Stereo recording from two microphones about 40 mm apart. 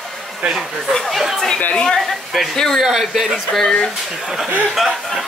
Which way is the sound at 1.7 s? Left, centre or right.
Centre.